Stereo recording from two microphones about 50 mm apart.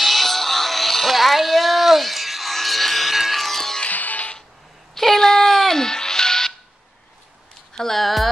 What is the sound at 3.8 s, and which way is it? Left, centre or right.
Music, left.